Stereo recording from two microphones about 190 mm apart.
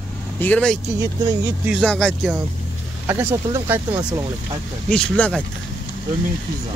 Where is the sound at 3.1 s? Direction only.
15° right (ahead or behind).